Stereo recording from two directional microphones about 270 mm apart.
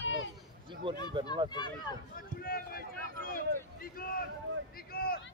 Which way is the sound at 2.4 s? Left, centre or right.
Left.